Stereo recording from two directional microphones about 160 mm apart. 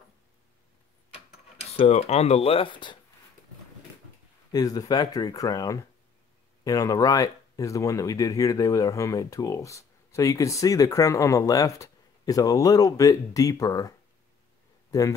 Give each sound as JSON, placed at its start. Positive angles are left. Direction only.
{"t": 1.6, "sound": "speech", "side_deg": 40}
{"t": 4.5, "sound": "speech", "side_deg": 25}